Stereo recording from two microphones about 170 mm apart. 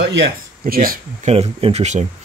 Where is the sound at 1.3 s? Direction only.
35° right (ahead or behind).